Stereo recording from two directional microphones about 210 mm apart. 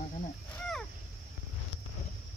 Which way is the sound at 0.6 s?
5° left (ahead or behind).